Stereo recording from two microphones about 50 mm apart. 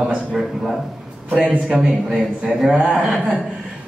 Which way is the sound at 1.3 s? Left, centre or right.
Right.